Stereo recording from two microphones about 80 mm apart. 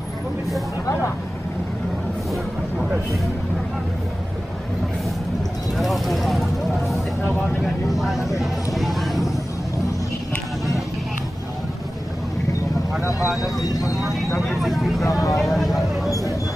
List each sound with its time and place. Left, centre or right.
2.8 s speech: centre
5.8 s speech: centre
7.6 s vehicle: centre
13.7 s speech: left
14.6 s speech: centre
15.0 s speech: left
15.3 s vehicle: centre